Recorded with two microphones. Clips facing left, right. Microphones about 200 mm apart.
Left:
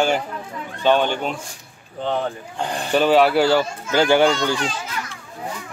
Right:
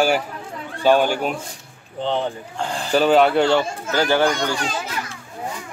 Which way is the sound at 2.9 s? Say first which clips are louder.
Even; centre (ahead or behind).